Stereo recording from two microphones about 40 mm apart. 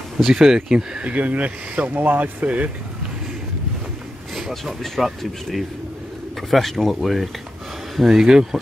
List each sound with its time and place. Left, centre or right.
0.3 s speech: centre
1.0 s speech: right
2.0 s speech: right
4.4 s speech: centre